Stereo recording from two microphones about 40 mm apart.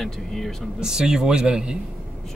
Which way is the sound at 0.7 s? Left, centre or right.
Centre.